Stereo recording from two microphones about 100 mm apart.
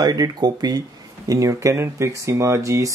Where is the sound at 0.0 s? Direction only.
45° right (ahead or behind).